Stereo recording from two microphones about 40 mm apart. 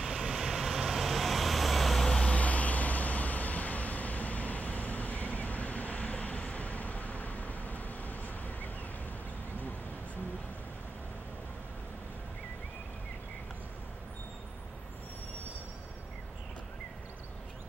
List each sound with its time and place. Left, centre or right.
0.0 s vehicle: centre
2.2 s vehicle: left